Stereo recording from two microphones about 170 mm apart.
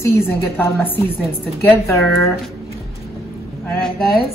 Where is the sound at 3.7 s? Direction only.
5° left (ahead or behind).